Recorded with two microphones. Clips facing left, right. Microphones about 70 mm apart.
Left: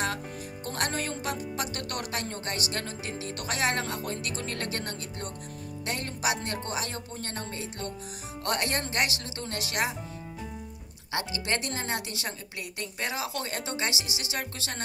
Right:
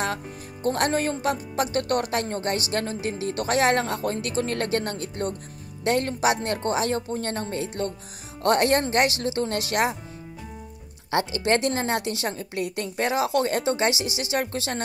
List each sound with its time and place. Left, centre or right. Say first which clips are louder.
0.7 s speech: right 9 dB; right
11.1 s speech: right 8 dB; right